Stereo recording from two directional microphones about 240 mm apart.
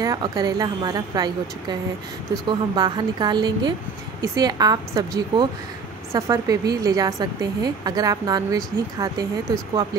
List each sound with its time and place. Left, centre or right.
0.0 s a woman's voice: centre